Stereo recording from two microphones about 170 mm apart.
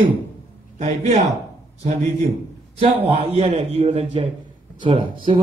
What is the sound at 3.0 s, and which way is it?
Speech, 35° right (ahead or behind).